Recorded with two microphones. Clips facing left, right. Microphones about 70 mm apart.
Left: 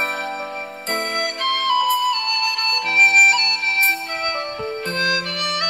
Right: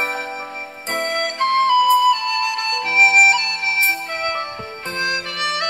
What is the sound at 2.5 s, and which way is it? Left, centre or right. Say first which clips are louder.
Music: right 1 dB; centre.